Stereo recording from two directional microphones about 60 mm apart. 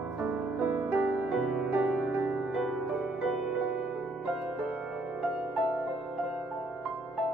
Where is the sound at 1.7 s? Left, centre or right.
Right.